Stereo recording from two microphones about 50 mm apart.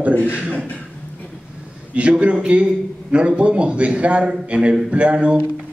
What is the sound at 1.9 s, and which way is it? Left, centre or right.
A man's voice, right.